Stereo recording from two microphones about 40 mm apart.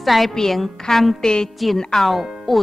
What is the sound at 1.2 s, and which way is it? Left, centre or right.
Speech, centre.